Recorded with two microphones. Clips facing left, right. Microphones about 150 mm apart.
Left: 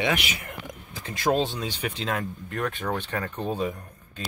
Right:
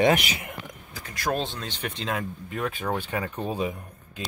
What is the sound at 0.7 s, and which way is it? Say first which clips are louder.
Speech: left 4 dB; 20° left (ahead or behind).